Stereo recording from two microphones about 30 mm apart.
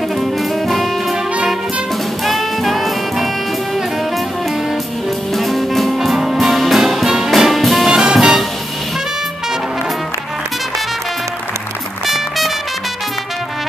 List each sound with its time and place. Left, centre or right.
0.2 s saxophone: centre
2.2 s music: centre
5.3 s music: centre
7.9 s music: right
12.1 s music: centre